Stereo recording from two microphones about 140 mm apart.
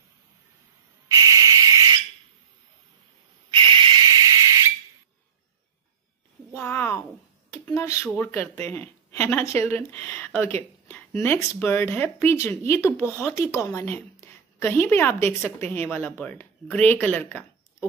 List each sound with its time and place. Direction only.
1.0 s owl: 25° right (ahead or behind)
3.5 s whistle: 40° right (ahead or behind)
6.5 s a sound: 15° left (ahead or behind)
8.1 s a woman's voice: 15° left (ahead or behind)